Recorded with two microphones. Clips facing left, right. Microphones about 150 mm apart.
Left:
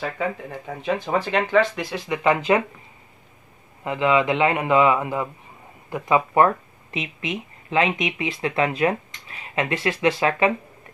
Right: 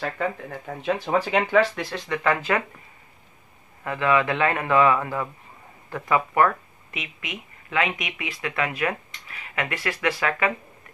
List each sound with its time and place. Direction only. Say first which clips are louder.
0.7 s speech: left 1 dB; centre (ahead or behind)
2.0 s a man's voice: left 4 dB; 20° left (ahead or behind)
3.8 s a man's voice: left 2 dB; 20° left (ahead or behind)